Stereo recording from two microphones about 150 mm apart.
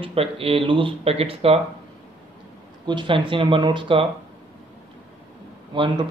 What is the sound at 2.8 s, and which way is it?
Speech, 35° right (ahead or behind).